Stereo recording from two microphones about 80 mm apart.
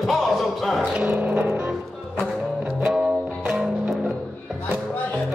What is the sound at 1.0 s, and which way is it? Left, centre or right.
Music, right.